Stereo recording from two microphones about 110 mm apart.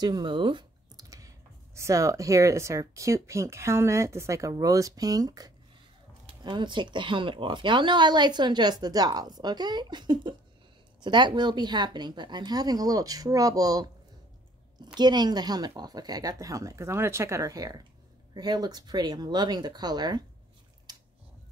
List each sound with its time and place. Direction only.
0.0 s speech: 45° right (ahead or behind)
1.0 s computer keyboard: 30° right (ahead or behind)
1.8 s speech: 30° right (ahead or behind)
6.2 s speech: 50° right (ahead or behind)
15.0 s speech: 40° right (ahead or behind)
20.9 s scissors: 35° right (ahead or behind)